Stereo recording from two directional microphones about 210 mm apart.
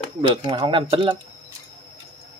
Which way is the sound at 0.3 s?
20° right (ahead or behind).